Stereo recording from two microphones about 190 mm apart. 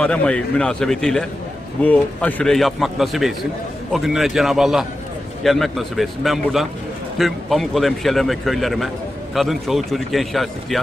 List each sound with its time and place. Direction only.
0.0 s a man's voice: 5° left (ahead or behind)